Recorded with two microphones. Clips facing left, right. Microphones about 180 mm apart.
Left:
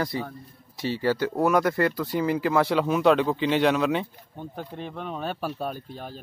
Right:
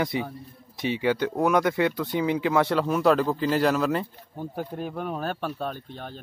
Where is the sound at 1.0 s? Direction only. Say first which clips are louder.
Left 1 dB; 5° left (ahead or behind).